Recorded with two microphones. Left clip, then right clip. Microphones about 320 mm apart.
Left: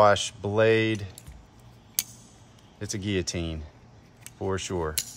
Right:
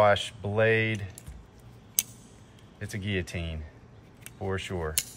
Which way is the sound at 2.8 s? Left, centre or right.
Centre.